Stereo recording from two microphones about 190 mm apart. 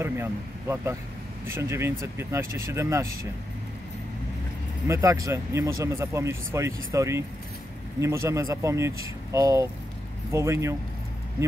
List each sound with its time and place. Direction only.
0.0 s speech: 15° right (ahead or behind)
4.8 s speech: 15° right (ahead or behind)